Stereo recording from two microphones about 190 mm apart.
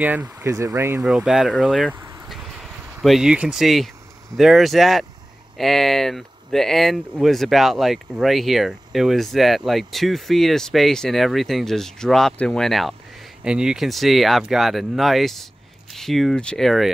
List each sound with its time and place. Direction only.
0.0 s speech: 10° right (ahead or behind)
1.0 s speech: centre (ahead or behind)
2.0 s vehicle: 15° right (ahead or behind)
2.2 s a sound: centre (ahead or behind)
4.4 s speech: centre (ahead or behind)